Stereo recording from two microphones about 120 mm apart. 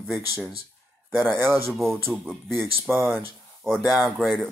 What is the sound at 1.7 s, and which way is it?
Speech, centre (ahead or behind).